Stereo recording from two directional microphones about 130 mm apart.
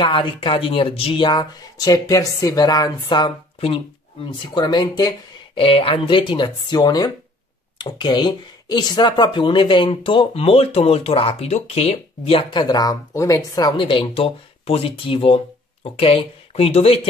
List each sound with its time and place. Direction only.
0.0 s speech: 40° left (ahead or behind)
13.7 s speech: 40° left (ahead or behind)